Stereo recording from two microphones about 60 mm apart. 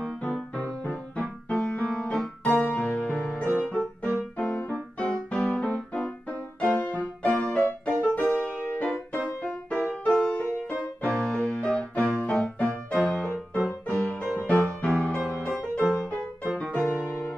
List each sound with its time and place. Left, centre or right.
0.6 s music: centre
1.5 s piano: centre
3.5 s music: left
7.2 s music: centre
14.4 s music: left
15.2 s music: centre
15.9 s music: centre